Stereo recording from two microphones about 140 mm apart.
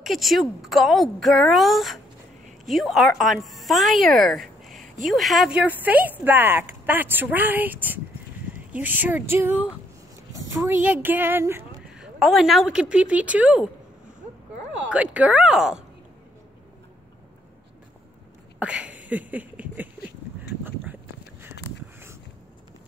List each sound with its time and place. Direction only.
0.0 s speech: centre (ahead or behind)
4.7 s a sound: 70° right (ahead or behind)
5.0 s speech: centre (ahead or behind)
5.6 s speech: 10° right (ahead or behind)
11.9 s speech: 5° right (ahead or behind)
14.9 s speech: 10° right (ahead or behind)
18.6 s a sound: 10° right (ahead or behind)